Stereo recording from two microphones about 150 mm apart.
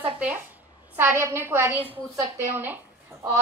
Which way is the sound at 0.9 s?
15° right (ahead or behind).